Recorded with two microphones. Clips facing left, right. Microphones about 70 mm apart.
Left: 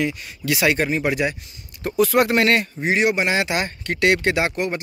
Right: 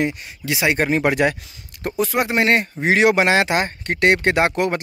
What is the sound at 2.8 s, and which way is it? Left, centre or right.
Speech, right.